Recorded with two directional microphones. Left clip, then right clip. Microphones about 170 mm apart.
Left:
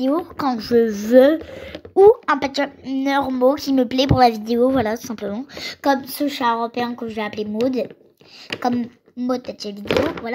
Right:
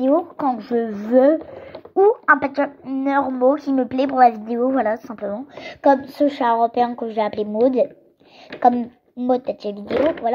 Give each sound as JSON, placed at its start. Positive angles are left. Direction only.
{"t": 0.1, "sound": "speech", "side_deg": 30}
{"t": 3.7, "sound": "speech", "side_deg": 45}
{"t": 4.3, "sound": "speech", "side_deg": 30}